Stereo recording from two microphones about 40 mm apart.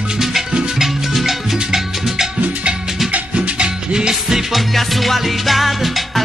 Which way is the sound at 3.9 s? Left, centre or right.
Centre.